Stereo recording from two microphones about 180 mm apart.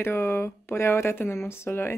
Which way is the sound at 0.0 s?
15° left (ahead or behind).